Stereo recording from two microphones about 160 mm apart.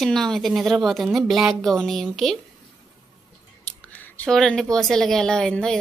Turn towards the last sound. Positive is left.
turn(degrees=5)  # may be behind; listen again after turning